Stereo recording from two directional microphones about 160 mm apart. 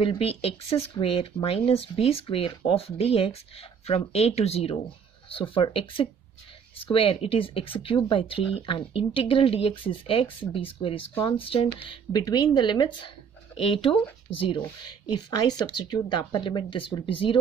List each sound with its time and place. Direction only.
0.0 s speech: 35° left (ahead or behind)
15.0 s speech: 25° left (ahead or behind)